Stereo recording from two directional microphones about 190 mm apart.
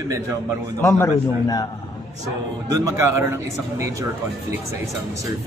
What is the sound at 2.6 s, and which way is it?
Speech, 15° right (ahead or behind).